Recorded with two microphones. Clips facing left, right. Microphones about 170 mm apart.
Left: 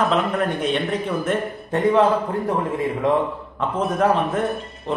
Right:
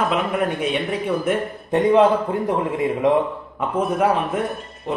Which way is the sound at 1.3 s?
15° right (ahead or behind).